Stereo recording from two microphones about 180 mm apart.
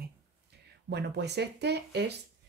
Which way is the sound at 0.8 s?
70° right (ahead or behind).